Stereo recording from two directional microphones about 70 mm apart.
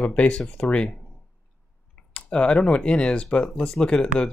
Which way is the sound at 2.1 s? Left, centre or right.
Centre.